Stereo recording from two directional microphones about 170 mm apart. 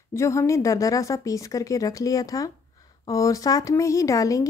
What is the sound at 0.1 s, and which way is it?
Speech, 15° left (ahead or behind).